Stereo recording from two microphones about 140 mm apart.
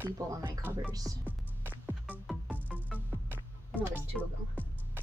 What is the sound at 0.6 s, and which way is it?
Speech, 15° right (ahead or behind).